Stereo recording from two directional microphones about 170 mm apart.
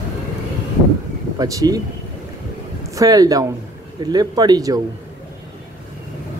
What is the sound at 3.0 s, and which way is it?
Speech, 20° right (ahead or behind).